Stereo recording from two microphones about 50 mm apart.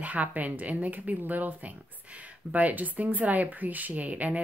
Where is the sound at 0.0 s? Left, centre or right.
Right.